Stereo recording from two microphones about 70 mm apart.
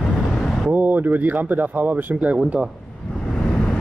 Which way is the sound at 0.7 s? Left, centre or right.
Right.